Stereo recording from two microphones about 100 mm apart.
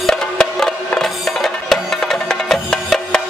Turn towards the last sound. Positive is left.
turn(degrees=5)  # may be behind; listen again after turning